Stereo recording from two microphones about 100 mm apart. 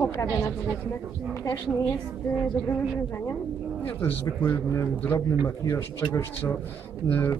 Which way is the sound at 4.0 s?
25° left (ahead or behind).